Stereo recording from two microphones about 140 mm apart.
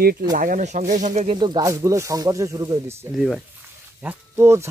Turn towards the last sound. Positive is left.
turn(degrees=-20)  # may be behind; listen again after turning